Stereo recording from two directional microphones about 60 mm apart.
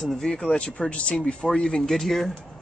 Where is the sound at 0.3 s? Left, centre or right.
Centre.